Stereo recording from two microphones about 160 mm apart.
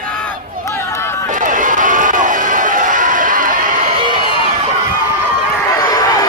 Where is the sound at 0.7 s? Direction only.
15° left (ahead or behind).